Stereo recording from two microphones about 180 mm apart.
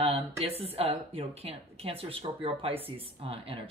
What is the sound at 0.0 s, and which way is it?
Speech, 35° right (ahead or behind).